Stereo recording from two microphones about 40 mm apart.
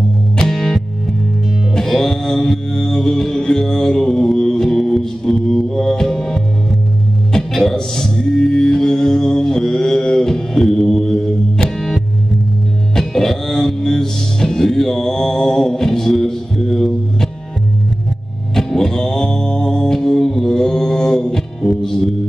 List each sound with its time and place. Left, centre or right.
0.4 s music: centre
1.8 s music: centre
12.9 s music: centre
18.5 s music: centre